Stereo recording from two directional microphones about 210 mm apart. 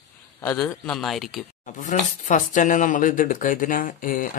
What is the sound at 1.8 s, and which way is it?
Speech, 35° left (ahead or behind).